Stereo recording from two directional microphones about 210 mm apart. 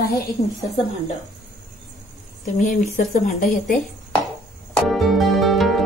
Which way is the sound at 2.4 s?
35° left (ahead or behind).